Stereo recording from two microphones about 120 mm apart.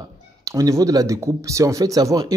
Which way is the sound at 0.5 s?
30° right (ahead or behind).